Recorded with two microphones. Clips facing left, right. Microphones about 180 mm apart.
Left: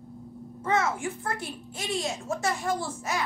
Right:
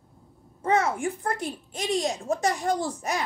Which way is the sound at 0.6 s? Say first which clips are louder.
Right 3 dB; 35° right (ahead or behind).